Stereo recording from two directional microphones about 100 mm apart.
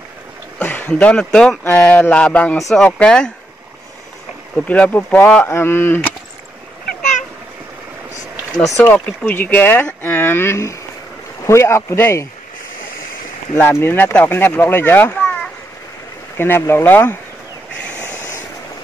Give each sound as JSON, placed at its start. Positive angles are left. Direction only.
{"t": 0.6, "sound": "speech", "side_deg": 15}
{"t": 4.6, "sound": "speech", "side_deg": 15}
{"t": 8.8, "sound": "speech", "side_deg": 15}
{"t": 13.6, "sound": "speech", "side_deg": 25}
{"t": 16.3, "sound": "speech", "side_deg": 20}